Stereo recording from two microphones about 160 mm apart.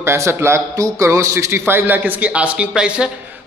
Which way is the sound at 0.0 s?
15° right (ahead or behind).